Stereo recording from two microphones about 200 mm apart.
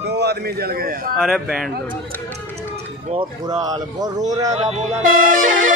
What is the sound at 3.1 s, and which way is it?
Speech, 20° right (ahead or behind).